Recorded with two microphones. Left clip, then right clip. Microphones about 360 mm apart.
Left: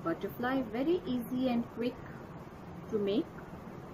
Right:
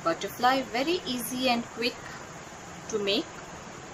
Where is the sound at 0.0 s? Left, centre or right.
Right.